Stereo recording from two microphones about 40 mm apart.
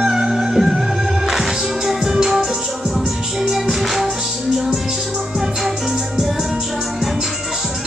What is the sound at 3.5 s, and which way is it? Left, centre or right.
Music, centre.